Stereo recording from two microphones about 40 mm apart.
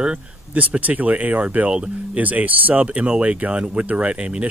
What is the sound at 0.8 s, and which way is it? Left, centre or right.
Speech, right.